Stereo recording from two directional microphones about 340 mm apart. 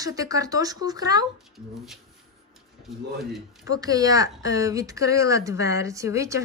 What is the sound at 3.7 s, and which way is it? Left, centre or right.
Speech, centre.